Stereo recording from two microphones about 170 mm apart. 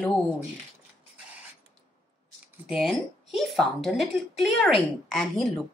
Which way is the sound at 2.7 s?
Centre (ahead or behind).